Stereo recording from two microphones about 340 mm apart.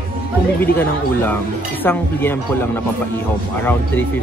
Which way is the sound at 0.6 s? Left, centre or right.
Centre.